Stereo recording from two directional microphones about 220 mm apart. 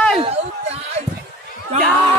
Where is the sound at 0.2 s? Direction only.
30° right (ahead or behind).